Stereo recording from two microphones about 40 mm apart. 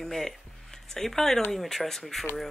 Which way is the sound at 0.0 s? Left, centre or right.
Centre.